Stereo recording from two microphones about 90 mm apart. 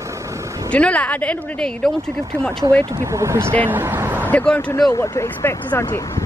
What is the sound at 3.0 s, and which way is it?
Speech, 35° right (ahead or behind).